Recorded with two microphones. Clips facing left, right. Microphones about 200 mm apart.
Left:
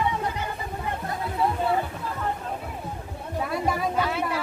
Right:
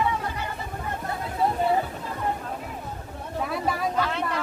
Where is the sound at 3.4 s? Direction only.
Centre (ahead or behind).